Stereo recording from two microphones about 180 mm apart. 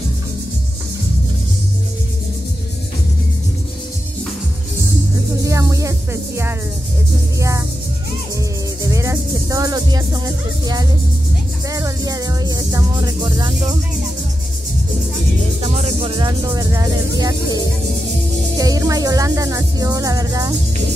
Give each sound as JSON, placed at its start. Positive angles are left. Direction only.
{"t": 5.4, "sound": "music", "side_deg": -15}
{"t": 8.8, "sound": "music", "side_deg": -15}
{"t": 15.6, "sound": "music", "side_deg": -35}
{"t": 16.2, "sound": "music", "side_deg": -20}